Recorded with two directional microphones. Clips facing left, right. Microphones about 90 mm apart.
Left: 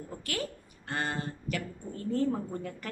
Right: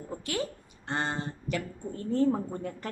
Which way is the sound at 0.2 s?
20° right (ahead or behind).